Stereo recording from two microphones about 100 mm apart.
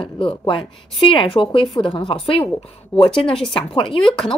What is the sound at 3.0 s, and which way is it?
Speech, 60° left (ahead or behind).